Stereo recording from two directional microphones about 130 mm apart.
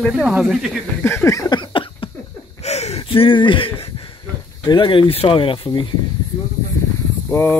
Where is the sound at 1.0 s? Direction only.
15° left (ahead or behind); by 2.1 s 40° left (ahead or behind).